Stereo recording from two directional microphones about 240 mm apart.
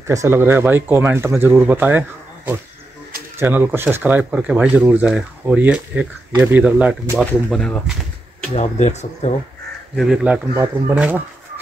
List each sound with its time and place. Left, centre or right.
0.0 s speech: centre
8.5 s speech: left
9.9 s speech: centre